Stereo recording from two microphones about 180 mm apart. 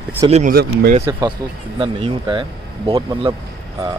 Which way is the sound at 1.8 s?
30° right (ahead or behind).